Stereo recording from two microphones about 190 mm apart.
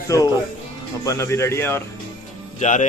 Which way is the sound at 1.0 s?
15° left (ahead or behind).